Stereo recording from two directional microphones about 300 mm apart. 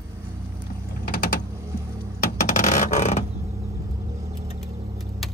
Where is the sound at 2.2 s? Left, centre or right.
Left.